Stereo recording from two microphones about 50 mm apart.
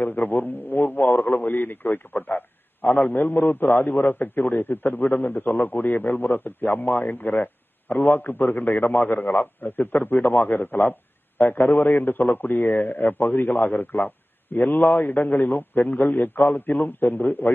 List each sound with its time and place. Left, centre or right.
0.0 s a man's voice: left
10.1 s a man's voice: left